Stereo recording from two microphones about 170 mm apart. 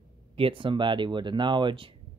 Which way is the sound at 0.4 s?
30° right (ahead or behind).